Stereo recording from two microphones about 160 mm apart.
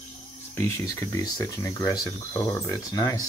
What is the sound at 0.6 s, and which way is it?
Speech, 15° left (ahead or behind).